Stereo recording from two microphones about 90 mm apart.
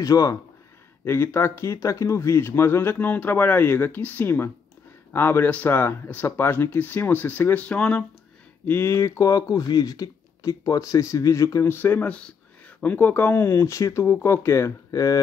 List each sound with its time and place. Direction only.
0.0 s speech: 40° left (ahead or behind)
1.0 s speech: 25° left (ahead or behind)
8.6 s speech: 30° left (ahead or behind)
11.7 s speech: 20° left (ahead or behind); by 15.1 s 40° left (ahead or behind)